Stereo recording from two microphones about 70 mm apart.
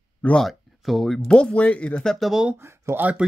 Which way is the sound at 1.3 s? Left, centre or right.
Centre.